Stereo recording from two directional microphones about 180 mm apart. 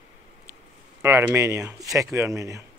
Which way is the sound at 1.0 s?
15° right (ahead or behind).